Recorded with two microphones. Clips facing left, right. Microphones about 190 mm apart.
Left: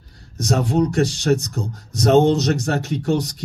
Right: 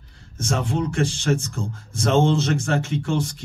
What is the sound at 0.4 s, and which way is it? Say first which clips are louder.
Speech: left 6 dB; 40° left (ahead or behind).